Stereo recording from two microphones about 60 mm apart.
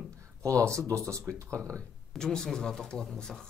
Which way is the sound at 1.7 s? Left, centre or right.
Centre.